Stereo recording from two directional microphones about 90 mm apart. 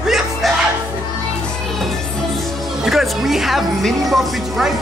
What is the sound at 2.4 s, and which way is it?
Speech, centre (ahead or behind).